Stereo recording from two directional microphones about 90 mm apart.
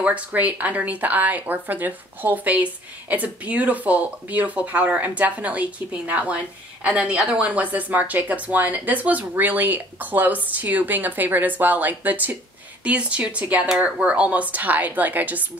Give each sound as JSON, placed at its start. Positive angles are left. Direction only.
{"t": 0.0, "sound": "speech", "side_deg": -15}